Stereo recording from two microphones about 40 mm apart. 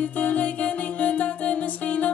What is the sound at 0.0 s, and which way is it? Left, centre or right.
Music, left.